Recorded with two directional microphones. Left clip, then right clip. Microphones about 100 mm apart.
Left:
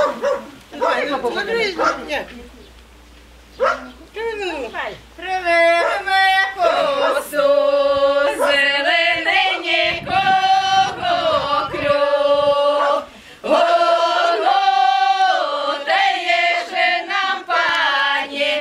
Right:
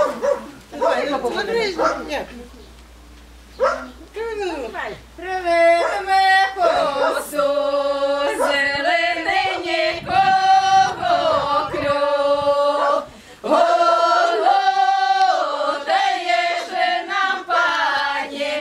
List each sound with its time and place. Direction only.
0.7 s a man's voice: 5° left (ahead or behind)
4.2 s speech: 10° left (ahead or behind)
6.7 s speech: 5° left (ahead or behind)
8.5 s music: 15° left (ahead or behind)